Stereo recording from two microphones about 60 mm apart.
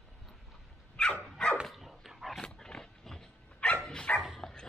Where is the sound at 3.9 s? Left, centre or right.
Centre.